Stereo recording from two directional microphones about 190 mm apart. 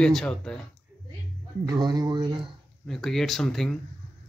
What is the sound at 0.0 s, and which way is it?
Speech, 5° left (ahead or behind).